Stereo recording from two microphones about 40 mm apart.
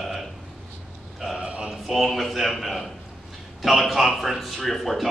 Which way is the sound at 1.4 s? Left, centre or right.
Right.